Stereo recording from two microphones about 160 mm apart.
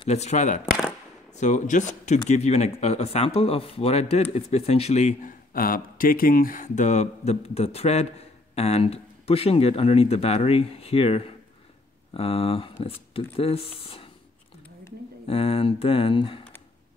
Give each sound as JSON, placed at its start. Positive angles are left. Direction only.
{"t": 0.1, "sound": "speech", "side_deg": 45}
{"t": 5.5, "sound": "speech", "side_deg": 60}
{"t": 15.2, "sound": "speech", "side_deg": 35}